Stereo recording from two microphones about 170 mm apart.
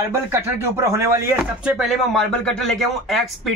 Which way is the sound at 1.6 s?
Centre (ahead or behind).